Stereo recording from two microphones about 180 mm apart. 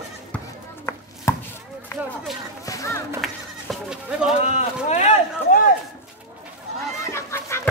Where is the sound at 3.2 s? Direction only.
Centre (ahead or behind).